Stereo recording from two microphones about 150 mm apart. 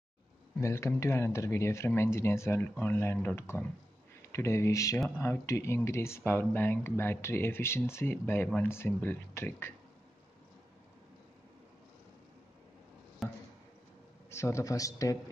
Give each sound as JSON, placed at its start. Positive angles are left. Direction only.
{"t": 0.6, "sound": "speech", "side_deg": 20}
{"t": 13.2, "sound": "a sound", "side_deg": 0}
{"t": 14.3, "sound": "speech", "side_deg": 20}